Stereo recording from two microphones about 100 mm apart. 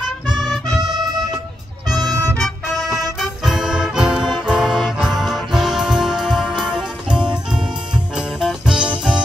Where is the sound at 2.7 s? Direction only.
Centre (ahead or behind).